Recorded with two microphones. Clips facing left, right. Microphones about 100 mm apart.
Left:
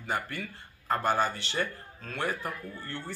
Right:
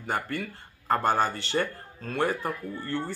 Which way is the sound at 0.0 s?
45° right (ahead or behind).